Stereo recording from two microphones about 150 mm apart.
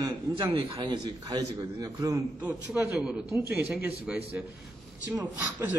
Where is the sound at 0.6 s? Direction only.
35° right (ahead or behind).